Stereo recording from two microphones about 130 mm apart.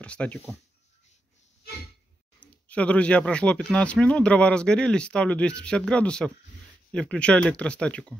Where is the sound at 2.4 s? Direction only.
10° left (ahead or behind).